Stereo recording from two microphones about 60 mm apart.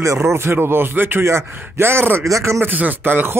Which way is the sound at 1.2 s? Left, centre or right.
Right.